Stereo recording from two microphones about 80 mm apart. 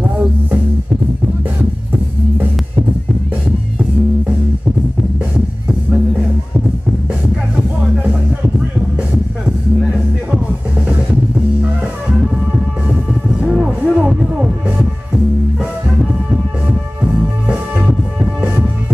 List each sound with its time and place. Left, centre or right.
13.4 s music: centre
16.6 s music: centre